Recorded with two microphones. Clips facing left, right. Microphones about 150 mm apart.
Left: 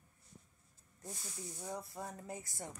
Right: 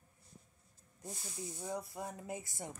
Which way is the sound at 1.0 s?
20° right (ahead or behind).